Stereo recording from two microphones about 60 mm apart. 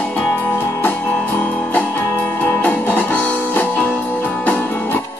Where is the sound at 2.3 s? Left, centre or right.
Left.